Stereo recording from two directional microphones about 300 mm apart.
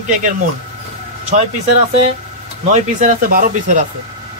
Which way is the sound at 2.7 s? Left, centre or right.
Right.